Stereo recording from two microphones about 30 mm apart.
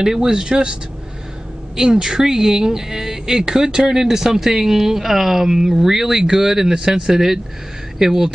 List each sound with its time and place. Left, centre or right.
0.0 s speech: centre
2.0 s speech: right